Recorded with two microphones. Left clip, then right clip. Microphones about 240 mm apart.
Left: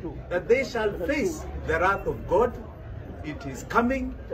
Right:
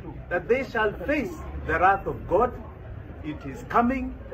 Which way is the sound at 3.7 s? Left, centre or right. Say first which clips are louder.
Right 1 dB; centre.